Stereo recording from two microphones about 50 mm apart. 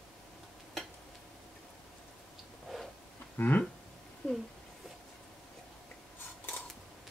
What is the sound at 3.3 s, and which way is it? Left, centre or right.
Speech, left.